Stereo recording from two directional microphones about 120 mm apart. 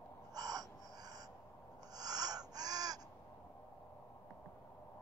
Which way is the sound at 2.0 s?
35° right (ahead or behind).